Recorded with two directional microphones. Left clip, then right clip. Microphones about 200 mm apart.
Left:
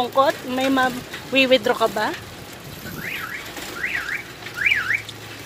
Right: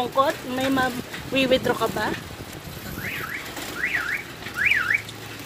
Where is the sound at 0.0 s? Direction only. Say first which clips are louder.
Left 3 dB; 25° left (ahead or behind).